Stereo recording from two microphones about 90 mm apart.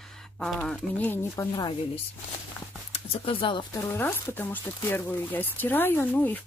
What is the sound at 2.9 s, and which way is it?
Speech, 90° left.